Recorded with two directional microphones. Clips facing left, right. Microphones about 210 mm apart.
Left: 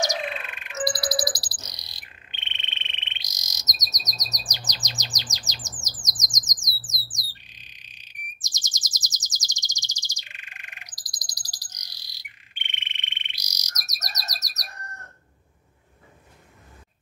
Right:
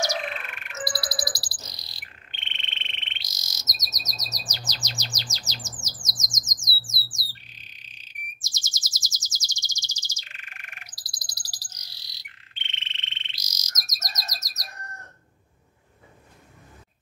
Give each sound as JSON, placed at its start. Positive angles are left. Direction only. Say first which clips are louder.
{"t": 0.6, "sound": "frog", "louder": "left 7 dB", "side_deg": 20}
{"t": 6.8, "sound": "bird", "louder": "right 1 dB", "side_deg": 15}